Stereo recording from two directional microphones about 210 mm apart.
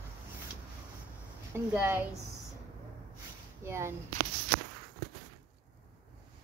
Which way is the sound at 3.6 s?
10° right (ahead or behind).